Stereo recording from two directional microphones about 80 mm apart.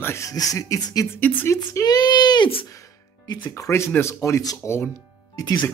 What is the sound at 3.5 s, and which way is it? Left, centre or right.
Speech, left.